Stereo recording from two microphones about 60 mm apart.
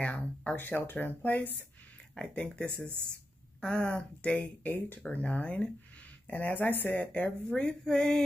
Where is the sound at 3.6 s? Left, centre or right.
Centre; by 7.0 s left.